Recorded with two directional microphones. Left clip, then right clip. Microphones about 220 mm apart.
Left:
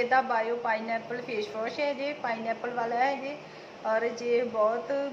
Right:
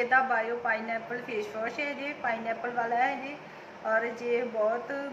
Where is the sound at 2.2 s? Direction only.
Centre (ahead or behind).